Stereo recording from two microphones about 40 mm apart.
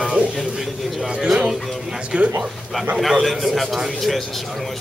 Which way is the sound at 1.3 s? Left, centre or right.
Centre.